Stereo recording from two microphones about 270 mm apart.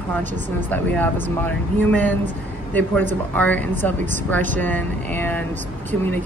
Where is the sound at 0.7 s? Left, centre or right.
Centre.